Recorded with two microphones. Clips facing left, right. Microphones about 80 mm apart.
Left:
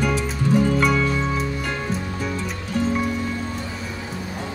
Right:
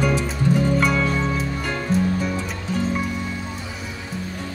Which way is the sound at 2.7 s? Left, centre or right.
Right.